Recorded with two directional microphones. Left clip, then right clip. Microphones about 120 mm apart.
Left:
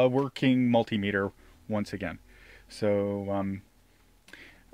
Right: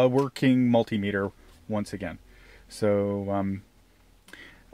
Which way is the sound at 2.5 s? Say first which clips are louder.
Right 3 dB; 30° right (ahead or behind).